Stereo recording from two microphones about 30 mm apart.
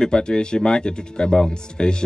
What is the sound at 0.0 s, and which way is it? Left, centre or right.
Speech, left.